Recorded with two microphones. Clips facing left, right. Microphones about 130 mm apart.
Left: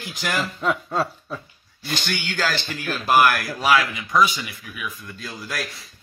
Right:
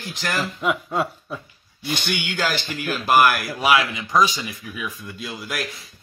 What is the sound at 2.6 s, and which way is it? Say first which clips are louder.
Speech: right 1 dB; 5° right (ahead or behind).